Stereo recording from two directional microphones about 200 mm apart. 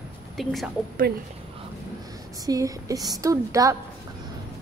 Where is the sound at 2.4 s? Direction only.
15° right (ahead or behind).